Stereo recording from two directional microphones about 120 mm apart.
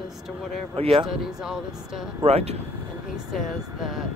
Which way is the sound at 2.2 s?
60° right (ahead or behind).